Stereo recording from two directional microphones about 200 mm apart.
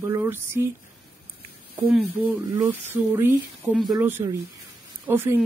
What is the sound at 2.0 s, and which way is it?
Speech, 10° right (ahead or behind).